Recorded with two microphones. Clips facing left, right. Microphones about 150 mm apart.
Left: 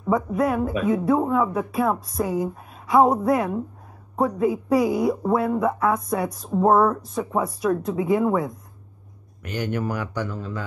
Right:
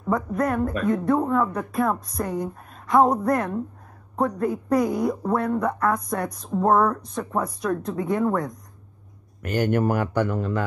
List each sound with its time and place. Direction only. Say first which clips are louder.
0.0 s speech: left 2 dB; centre (ahead or behind)
9.4 s speech: right 5 dB; 50° right (ahead or behind)